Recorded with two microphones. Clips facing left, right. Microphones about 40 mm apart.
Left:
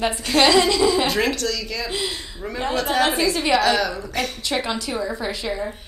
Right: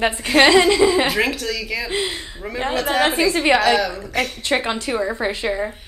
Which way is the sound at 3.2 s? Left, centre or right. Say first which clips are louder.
Right 3 dB; right.